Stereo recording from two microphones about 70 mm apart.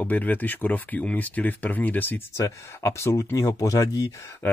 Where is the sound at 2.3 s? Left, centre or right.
Left.